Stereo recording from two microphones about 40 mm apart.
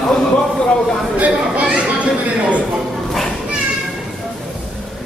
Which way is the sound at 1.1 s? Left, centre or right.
Right.